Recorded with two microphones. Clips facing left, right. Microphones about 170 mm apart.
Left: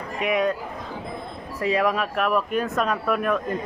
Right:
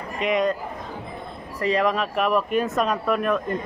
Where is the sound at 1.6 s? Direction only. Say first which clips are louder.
Right 1 dB; 5° left (ahead or behind).